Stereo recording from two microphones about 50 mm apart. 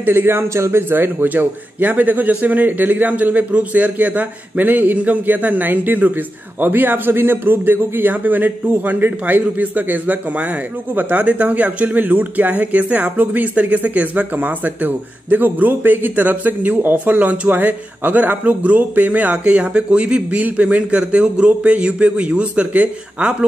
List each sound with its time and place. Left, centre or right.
0.0 s a man's voice: right
0.9 s speech: right
19.3 s a man's voice: right